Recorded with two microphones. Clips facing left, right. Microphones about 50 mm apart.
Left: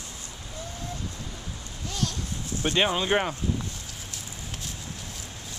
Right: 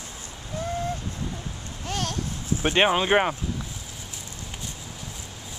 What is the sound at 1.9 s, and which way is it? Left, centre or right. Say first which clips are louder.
Clip-clop: right 2 dB; right.